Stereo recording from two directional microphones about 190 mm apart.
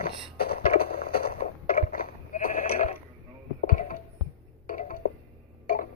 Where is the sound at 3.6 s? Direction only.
45° left (ahead or behind).